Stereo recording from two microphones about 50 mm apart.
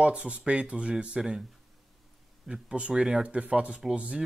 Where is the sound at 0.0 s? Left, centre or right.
Right.